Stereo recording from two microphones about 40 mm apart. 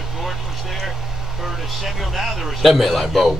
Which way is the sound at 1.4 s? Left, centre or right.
Centre.